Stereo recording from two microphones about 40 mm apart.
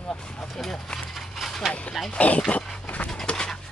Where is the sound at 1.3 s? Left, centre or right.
Centre.